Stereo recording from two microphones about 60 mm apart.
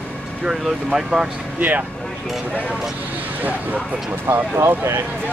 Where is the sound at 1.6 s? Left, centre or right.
Right.